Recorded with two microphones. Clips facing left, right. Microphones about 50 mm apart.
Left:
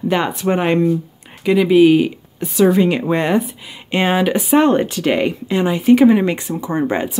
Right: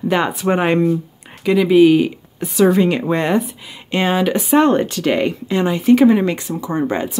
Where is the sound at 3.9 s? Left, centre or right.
Centre.